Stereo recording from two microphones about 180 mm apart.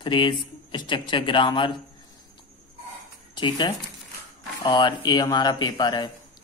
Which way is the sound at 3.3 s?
25° left (ahead or behind).